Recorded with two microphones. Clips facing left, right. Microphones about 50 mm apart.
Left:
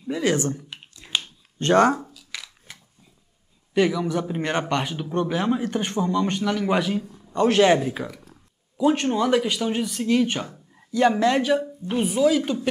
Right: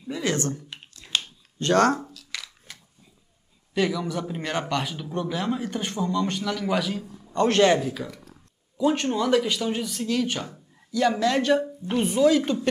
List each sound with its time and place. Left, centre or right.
0.1 s speech: centre
0.9 s a sound: centre
1.8 s speech: centre
2.1 s scissors: centre
3.7 s a man's voice: centre
10.0 s a man's voice: left
11.4 s speech: centre